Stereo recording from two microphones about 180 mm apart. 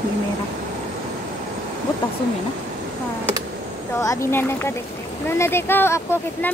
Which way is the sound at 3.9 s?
15° left (ahead or behind).